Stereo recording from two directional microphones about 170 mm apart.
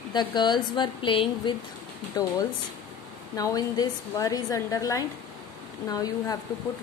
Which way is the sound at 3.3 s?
20° left (ahead or behind).